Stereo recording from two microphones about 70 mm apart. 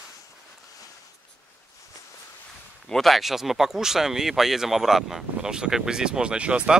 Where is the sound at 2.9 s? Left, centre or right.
Centre.